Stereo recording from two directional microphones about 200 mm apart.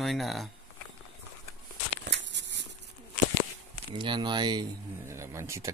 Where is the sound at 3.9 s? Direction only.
25° right (ahead or behind).